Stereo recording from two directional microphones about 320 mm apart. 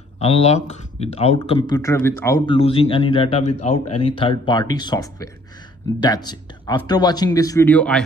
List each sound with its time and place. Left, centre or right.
0.2 s speech: centre